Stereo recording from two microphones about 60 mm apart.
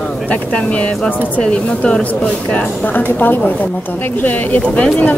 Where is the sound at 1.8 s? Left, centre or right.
Centre.